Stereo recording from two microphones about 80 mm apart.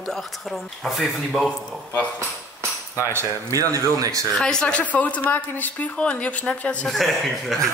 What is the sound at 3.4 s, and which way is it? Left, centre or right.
Speech, right.